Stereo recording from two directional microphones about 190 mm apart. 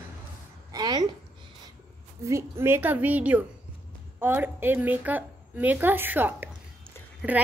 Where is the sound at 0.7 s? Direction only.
20° right (ahead or behind).